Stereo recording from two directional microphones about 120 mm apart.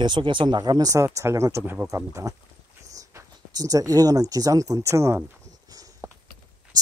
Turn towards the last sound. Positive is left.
turn(degrees=-25)  # may be behind; listen again after turning